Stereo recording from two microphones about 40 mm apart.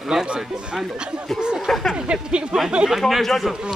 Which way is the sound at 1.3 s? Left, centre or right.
Centre.